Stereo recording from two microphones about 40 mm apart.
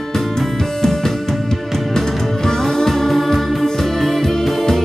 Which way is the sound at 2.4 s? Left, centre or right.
Centre.